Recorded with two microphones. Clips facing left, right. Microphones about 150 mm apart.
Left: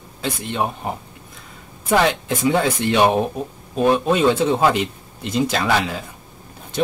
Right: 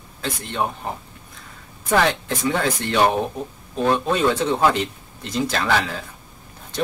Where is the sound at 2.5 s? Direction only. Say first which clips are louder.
Left 4 dB; 10° left (ahead or behind).